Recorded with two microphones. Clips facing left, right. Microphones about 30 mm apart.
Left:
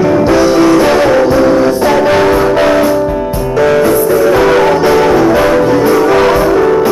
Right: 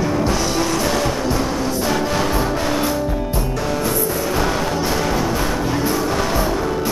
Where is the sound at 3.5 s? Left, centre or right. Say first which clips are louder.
Left 15 dB; left.